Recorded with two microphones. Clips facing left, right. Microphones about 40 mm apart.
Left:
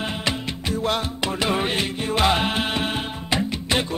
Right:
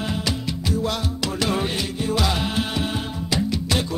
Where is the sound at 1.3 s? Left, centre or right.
Left.